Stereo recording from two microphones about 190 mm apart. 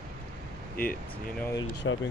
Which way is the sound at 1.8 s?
90° left.